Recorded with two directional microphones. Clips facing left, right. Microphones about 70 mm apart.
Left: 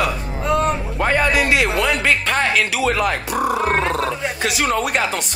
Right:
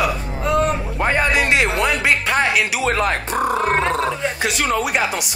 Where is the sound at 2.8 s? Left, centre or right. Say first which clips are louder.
Even; right.